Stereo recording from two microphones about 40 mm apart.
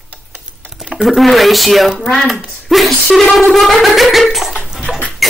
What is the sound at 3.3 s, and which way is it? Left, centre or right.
Speech, centre.